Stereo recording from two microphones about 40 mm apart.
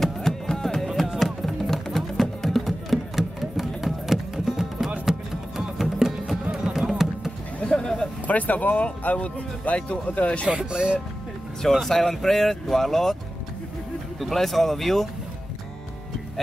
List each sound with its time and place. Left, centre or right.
0.0 s music: centre
5.9 s music: centre
7.6 s a sound: centre
8.3 s speech: left
10.7 s speech: right
11.7 s speech: centre
14.2 s speech: centre